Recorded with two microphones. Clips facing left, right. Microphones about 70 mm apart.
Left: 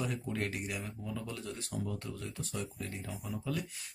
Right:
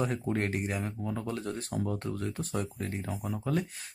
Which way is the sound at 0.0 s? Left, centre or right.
Right.